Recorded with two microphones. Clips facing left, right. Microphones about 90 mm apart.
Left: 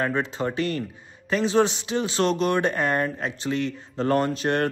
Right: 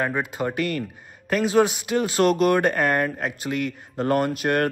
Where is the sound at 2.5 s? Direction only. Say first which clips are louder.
Right 3 dB; 45° right (ahead or behind).